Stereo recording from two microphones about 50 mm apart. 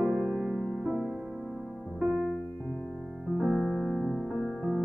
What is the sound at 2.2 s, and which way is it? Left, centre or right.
Music, centre.